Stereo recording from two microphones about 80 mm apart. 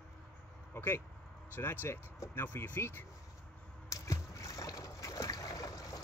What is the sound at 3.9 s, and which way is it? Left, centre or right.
Boat, left.